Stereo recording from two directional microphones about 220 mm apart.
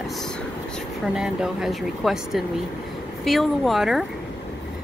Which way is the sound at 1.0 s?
5° right (ahead or behind).